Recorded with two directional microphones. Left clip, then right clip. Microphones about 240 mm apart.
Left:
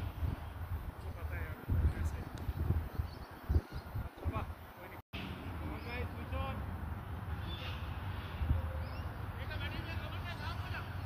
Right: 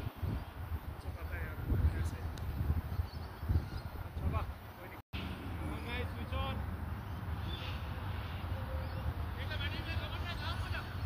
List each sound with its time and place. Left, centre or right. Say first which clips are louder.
5.9 s vehicle: right 2 dB; right
9.4 s vehicle: right 3 dB; right